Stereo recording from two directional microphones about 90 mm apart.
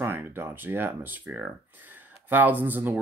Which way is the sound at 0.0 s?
25° right (ahead or behind).